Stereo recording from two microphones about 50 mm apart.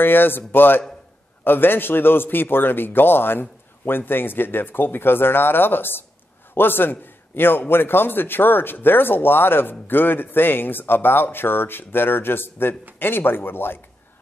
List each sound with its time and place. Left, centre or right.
0.0 s a man's voice: left